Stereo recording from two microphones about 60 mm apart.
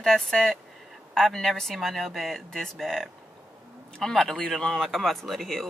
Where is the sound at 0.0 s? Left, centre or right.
Centre.